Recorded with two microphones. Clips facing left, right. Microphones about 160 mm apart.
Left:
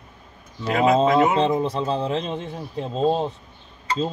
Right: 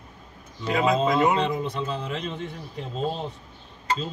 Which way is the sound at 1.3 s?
35° left (ahead or behind).